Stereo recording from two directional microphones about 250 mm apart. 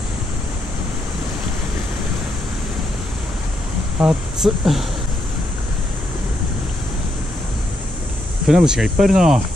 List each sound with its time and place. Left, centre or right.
4.0 s speech: centre
8.5 s speech: centre